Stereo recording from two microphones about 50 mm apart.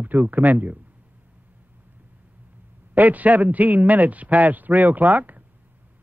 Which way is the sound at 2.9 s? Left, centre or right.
Right.